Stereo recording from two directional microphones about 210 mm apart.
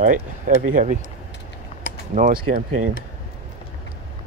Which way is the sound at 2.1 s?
35° right (ahead or behind).